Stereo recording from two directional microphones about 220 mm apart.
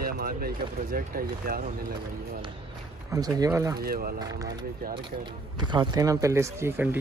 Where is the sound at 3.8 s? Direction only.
40° right (ahead or behind).